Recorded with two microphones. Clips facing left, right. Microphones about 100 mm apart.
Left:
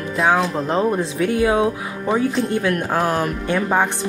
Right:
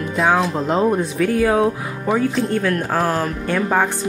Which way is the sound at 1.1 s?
25° left (ahead or behind).